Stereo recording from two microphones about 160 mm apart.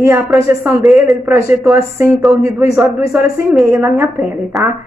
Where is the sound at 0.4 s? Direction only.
15° right (ahead or behind).